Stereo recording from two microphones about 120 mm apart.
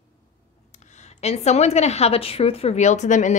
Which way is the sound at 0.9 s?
65° left (ahead or behind).